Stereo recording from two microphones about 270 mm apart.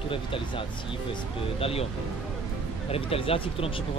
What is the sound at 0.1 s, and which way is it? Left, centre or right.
Speech, centre.